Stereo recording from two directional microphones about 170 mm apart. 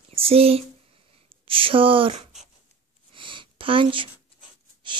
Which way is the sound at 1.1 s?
30° right (ahead or behind).